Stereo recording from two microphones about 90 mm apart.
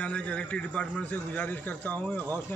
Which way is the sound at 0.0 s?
15° left (ahead or behind).